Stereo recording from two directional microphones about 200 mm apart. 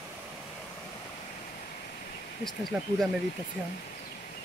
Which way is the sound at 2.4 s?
Centre (ahead or behind).